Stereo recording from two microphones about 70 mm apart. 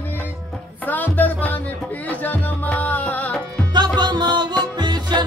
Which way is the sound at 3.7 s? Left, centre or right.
Right.